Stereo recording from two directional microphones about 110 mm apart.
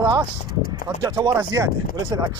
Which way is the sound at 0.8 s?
35° right (ahead or behind).